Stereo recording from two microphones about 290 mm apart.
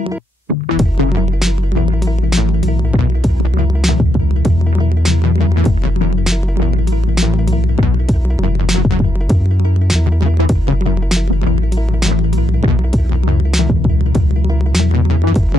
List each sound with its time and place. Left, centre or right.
0.7 s music: centre
4.4 s music: centre
7.2 s music: centre
8.6 s music: centre
13.5 s music: centre